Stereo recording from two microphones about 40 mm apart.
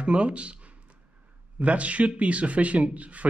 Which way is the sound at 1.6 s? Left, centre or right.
Right.